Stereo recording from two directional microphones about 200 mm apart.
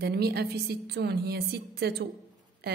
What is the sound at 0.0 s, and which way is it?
A woman's voice, 50° right (ahead or behind).